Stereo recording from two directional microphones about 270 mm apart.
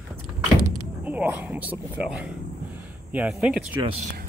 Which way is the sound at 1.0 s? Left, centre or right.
Centre.